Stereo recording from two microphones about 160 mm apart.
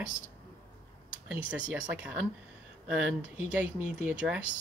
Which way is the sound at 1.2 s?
10° right (ahead or behind).